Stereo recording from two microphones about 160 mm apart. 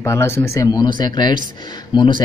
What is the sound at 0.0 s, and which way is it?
Speech, 15° left (ahead or behind).